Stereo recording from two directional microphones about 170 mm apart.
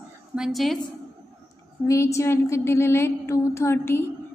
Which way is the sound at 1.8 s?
15° left (ahead or behind).